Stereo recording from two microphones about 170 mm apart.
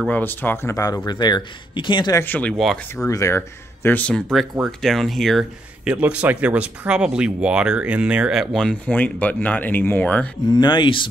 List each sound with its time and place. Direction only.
0.0 s speech: 10° left (ahead or behind); by 2.2 s 25° left (ahead or behind)
2.2 s speech: 10° left (ahead or behind)
3.1 s speech: 20° left (ahead or behind)
10.5 s speech: 25° left (ahead or behind)